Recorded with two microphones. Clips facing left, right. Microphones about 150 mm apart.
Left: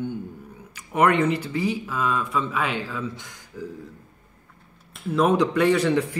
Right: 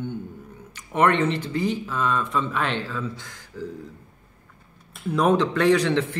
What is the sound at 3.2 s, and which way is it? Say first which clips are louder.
Speech: right 1 dB; 20° left (ahead or behind).